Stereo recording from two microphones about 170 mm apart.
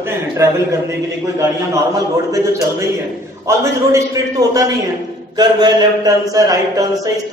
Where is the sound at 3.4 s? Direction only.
20° right (ahead or behind).